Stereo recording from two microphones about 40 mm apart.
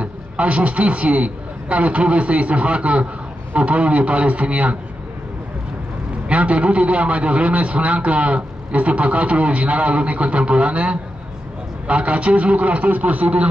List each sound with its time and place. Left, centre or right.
0.0 s a man's voice: right
6.2 s a man's voice: right